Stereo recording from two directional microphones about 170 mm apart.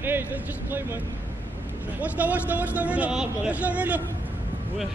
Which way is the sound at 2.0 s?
10° right (ahead or behind).